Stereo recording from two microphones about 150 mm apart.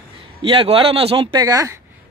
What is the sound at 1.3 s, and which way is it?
Speech, 25° right (ahead or behind).